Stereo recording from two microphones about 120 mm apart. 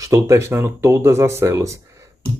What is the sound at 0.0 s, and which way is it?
Speech, 25° right (ahead or behind).